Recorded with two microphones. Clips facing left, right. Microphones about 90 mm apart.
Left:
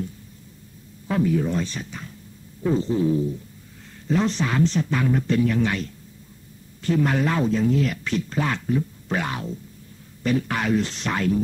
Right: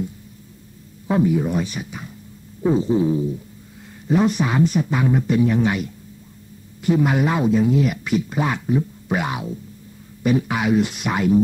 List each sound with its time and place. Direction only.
1.0 s speech: 20° right (ahead or behind)
2.6 s a sound: 15° right (ahead or behind)
4.1 s speech: 15° right (ahead or behind)